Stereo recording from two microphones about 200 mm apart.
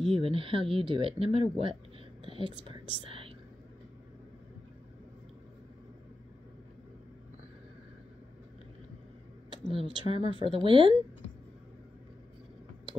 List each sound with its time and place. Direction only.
0.0 s speech: 25° right (ahead or behind)
9.5 s speech: 25° right (ahead or behind)